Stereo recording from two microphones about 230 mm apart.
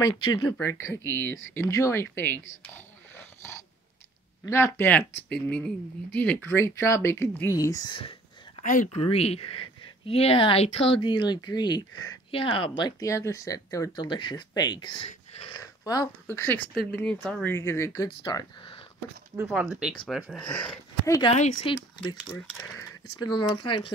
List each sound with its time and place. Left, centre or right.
0.3 s speech: centre
2.1 s a sound: centre
4.5 s speech: centre
8.6 s speech: left; by 18.8 s centre
19.3 s speech: centre
21.3 s speech: left
21.7 s speech: centre
23.1 s speech: centre